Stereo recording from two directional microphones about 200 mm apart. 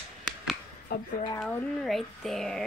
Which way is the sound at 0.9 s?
50° left (ahead or behind).